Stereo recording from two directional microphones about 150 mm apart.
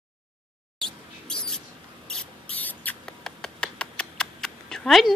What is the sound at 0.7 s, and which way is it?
Mouse, 5° left (ahead or behind).